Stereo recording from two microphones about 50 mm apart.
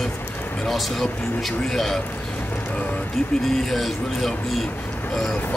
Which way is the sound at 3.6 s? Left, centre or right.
Centre.